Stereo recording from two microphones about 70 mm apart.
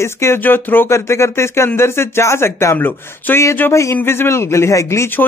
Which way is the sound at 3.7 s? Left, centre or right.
Left.